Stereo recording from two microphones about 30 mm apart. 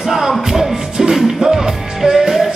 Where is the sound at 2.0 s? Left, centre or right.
Centre.